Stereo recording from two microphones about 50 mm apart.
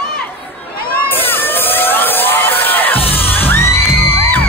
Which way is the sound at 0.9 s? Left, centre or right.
Left.